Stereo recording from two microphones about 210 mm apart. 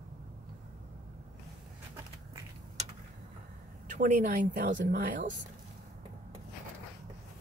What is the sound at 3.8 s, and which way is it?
Speech, 35° right (ahead or behind).